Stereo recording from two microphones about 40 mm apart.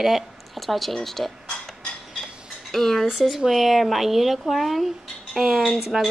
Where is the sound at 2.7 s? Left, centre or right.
Centre.